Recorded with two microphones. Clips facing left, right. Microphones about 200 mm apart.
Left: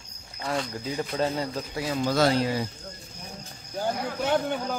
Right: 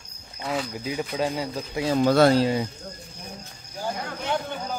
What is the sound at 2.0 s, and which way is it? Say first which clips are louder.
Speech: right 5 dB; 55° right (ahead or behind).